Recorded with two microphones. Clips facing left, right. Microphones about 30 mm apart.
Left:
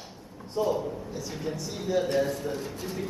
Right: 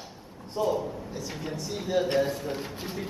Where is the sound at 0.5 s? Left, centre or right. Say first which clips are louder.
Even; centre.